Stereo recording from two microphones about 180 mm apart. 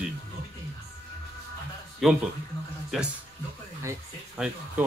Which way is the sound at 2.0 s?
Centre (ahead or behind).